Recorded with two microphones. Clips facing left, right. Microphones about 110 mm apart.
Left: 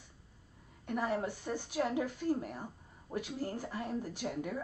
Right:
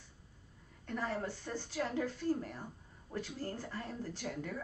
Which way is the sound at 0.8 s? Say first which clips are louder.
Left 4 dB; 15° left (ahead or behind).